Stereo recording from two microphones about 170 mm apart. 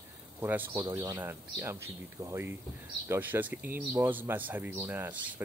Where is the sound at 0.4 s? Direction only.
10° right (ahead or behind).